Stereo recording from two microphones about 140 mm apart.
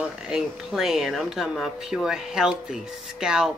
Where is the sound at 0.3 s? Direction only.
5° right (ahead or behind).